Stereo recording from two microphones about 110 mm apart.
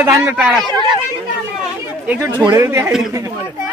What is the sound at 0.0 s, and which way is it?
Speech, 25° right (ahead or behind).